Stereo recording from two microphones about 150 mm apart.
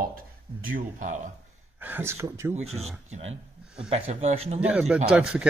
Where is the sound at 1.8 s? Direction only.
15° right (ahead or behind).